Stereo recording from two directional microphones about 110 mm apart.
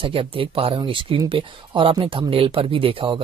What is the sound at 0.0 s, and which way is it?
Speech, 55° right (ahead or behind).